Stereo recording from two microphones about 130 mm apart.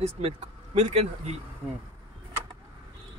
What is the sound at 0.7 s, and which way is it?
Speech, 55° right (ahead or behind).